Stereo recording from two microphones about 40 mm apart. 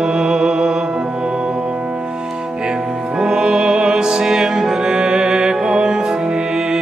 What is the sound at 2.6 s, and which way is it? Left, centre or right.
Music, centre.